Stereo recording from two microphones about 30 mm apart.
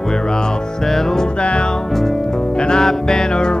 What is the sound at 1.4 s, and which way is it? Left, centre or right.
Music, left.